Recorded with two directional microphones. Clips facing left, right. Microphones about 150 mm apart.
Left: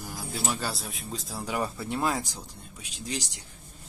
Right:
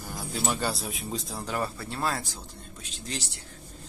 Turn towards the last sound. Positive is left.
turn(degrees=10)  # may be behind; listen again after turning